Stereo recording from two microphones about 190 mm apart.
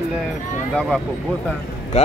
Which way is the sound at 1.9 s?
35° left (ahead or behind).